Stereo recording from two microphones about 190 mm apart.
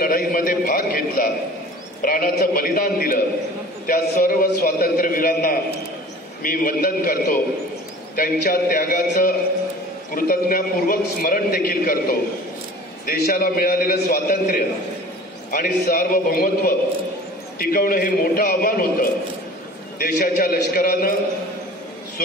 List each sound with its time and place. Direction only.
0.0 s a man's voice: 50° left (ahead or behind)